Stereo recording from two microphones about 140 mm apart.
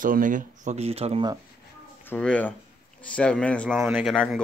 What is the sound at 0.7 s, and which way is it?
Speech, 50° right (ahead or behind).